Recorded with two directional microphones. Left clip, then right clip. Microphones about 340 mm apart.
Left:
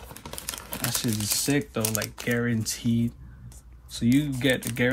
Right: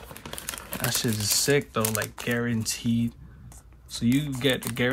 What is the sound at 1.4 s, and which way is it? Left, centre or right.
Speech, centre.